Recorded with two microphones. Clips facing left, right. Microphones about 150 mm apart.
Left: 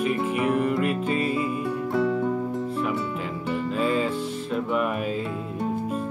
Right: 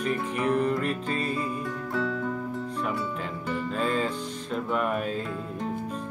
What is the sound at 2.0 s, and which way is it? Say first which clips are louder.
Music: left 6 dB; 20° left (ahead or behind).